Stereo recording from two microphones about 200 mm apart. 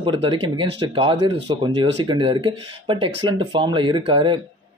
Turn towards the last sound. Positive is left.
turn(degrees=-25)  # may be behind; listen again after turning